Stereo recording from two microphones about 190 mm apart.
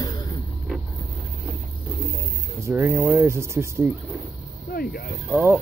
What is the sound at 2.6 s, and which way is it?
Speech, 15° right (ahead or behind).